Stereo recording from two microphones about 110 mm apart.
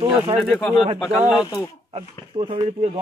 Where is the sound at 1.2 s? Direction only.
10° right (ahead or behind).